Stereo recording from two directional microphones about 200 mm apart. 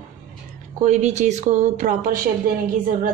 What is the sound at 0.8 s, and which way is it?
Speech, 35° right (ahead or behind).